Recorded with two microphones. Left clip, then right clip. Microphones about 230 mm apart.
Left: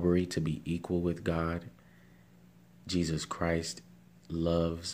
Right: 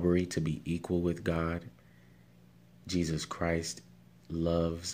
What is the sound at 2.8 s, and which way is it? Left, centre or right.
Speech, centre.